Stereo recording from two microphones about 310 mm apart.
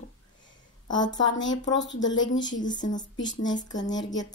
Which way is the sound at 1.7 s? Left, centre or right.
Left.